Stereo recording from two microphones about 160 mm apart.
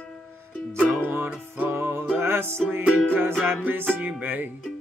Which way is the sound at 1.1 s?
15° right (ahead or behind).